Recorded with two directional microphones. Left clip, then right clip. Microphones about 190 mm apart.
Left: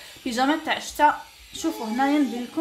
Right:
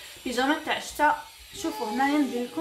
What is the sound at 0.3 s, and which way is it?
Speech, 35° left (ahead or behind).